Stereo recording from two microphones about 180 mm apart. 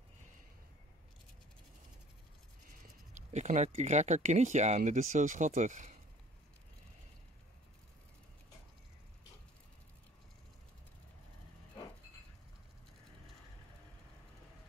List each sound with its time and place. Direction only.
2.8 s speech: 40° right (ahead or behind)